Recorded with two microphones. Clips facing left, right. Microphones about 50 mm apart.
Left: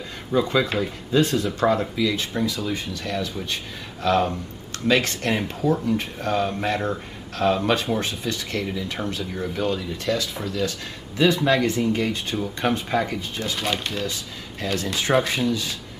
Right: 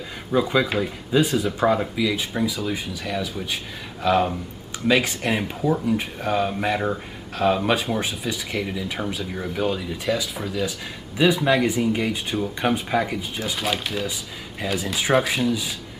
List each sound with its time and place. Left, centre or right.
0.3 s speech: centre